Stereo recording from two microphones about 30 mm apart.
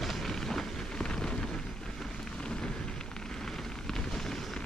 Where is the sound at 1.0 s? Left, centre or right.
Left.